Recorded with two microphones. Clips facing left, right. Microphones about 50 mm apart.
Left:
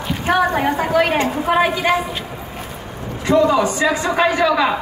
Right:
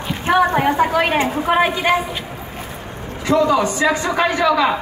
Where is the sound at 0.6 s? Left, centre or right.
Centre.